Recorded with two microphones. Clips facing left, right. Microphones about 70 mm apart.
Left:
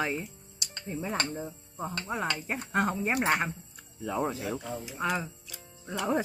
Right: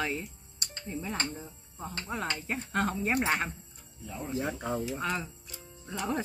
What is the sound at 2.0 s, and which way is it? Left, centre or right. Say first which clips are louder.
Speech: left 1 dB; centre.